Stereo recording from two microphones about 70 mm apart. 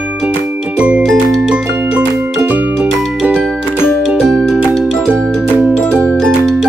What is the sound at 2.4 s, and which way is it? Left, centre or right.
Music, right.